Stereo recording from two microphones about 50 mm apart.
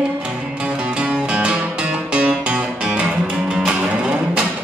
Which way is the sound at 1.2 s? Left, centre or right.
Right.